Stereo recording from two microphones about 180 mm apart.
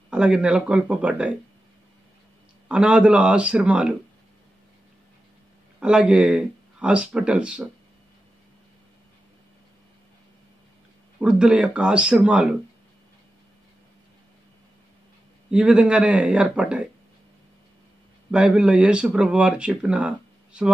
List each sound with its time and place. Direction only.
0.1 s speech: 5° right (ahead or behind)
2.7 s speech: 5° right (ahead or behind)
5.8 s speech: 5° right (ahead or behind)
11.1 s speech: 5° right (ahead or behind)
15.5 s speech: 5° right (ahead or behind)
18.3 s speech: 5° right (ahead or behind)